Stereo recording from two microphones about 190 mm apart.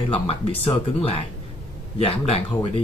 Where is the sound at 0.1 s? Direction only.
30° left (ahead or behind).